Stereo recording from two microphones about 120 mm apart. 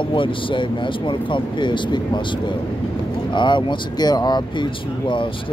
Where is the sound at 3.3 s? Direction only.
40° left (ahead or behind).